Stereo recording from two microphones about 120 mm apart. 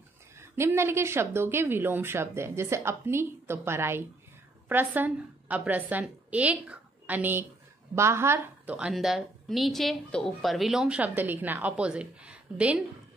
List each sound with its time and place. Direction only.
0.4 s a woman's voice: 20° right (ahead or behind)
8.7 s speech: 5° right (ahead or behind)